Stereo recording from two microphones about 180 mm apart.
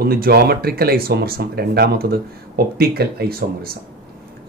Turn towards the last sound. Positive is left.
turn(degrees=-60)  # may be behind; listen again after turning